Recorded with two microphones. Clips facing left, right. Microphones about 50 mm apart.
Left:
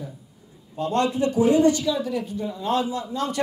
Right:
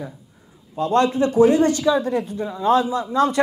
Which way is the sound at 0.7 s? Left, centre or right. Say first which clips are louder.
Right 5 dB; right.